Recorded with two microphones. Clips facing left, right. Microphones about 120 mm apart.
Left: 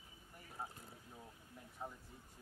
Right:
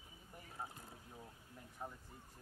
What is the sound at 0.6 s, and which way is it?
Boat, 5° left (ahead or behind).